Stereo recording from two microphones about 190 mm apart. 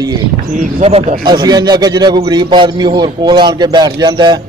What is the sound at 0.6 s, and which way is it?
Speech, 35° right (ahead or behind).